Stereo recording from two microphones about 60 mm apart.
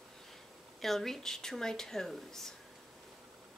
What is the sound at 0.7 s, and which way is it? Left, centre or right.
Speech, centre.